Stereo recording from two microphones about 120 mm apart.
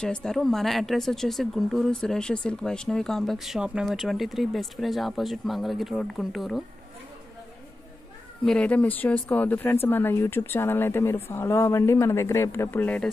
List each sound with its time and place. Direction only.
0.0 s speech: 5° left (ahead or behind)
8.5 s speech: 10° left (ahead or behind)